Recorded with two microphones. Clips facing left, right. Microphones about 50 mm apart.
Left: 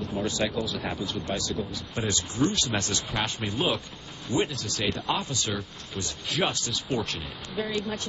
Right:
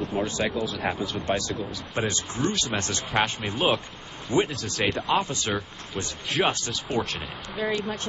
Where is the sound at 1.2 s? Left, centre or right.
Right.